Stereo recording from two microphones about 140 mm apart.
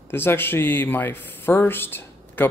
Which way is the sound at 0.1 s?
15° left (ahead or behind).